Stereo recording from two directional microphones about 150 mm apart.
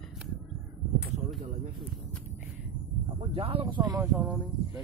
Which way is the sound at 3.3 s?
40° right (ahead or behind).